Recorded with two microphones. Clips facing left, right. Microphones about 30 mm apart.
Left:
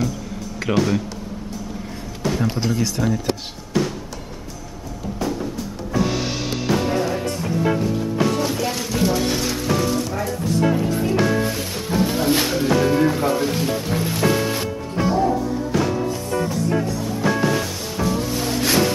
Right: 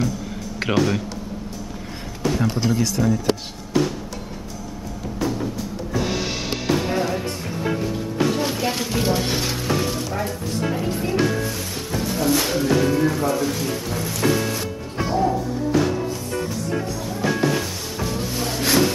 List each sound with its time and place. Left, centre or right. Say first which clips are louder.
0.7 s music: left 1 dB; centre
2.6 s speech: right 1 dB; centre
6.7 s music: left 1 dB; centre
11.2 s music: left 3 dB; centre
12.4 s speech: left 1 dB; centre
12.9 s speech: left 2 dB; left
14.2 s music: left 1 dB; centre
15.0 s music: left 2 dB; centre